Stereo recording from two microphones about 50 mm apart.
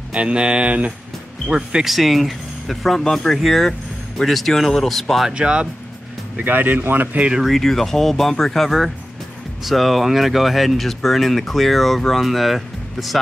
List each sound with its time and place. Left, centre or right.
0.1 s speech: right
1.9 s speech: centre
5.3 s speech: centre
6.3 s speech: right
7.4 s speech: centre